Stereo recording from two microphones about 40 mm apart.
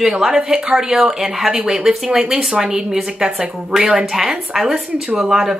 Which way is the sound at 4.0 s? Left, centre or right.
Centre.